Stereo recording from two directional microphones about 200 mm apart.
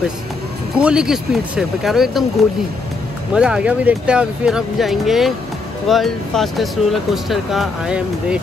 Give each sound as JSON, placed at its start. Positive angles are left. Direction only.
{"t": 0.7, "sound": "speech", "side_deg": -5}
{"t": 3.3, "sound": "speech", "side_deg": -5}